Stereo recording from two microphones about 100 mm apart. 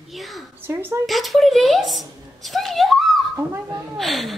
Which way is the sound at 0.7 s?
25° right (ahead or behind).